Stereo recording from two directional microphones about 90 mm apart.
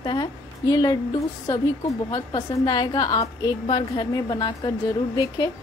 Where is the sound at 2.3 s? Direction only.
55° left (ahead or behind).